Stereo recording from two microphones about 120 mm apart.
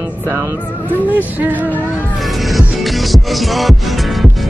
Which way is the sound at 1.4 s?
15° right (ahead or behind).